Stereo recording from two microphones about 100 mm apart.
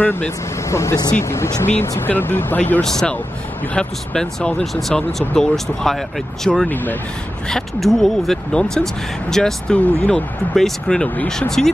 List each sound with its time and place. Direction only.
0.0 s speech: 15° left (ahead or behind)
0.7 s speech: 30° left (ahead or behind)
2.8 s speech: 5° left (ahead or behind)
6.7 s speech: 20° left (ahead or behind)
7.4 s speech: 5° left (ahead or behind)